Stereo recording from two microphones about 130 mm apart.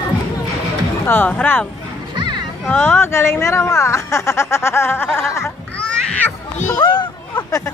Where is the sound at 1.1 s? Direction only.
15° left (ahead or behind).